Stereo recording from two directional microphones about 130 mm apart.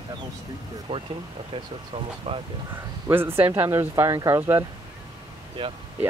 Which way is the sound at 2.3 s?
50° right (ahead or behind).